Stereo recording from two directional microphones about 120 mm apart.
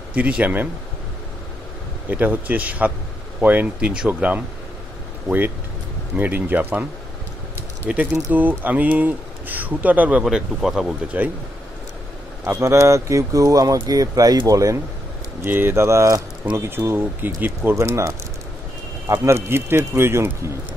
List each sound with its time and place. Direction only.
0.1 s speech: 10° right (ahead or behind)
2.0 s speech: 15° right (ahead or behind)
6.1 s speech: 15° right (ahead or behind)
12.4 s speech: 20° right (ahead or behind)
15.4 s speech: 15° right (ahead or behind)
19.2 s speech: 20° right (ahead or behind)